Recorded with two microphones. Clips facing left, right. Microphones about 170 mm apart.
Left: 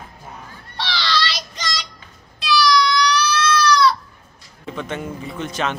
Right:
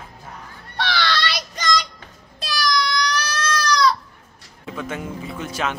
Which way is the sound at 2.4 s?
50° right (ahead or behind).